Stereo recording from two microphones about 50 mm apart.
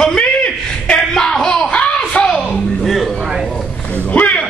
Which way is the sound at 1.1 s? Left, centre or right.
Centre.